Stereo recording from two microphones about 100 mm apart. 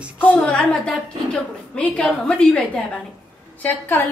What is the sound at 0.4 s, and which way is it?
A woman's voice, 10° left (ahead or behind).